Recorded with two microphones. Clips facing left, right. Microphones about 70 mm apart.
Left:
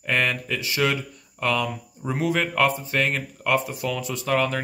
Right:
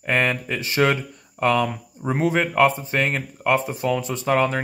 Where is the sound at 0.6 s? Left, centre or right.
Right.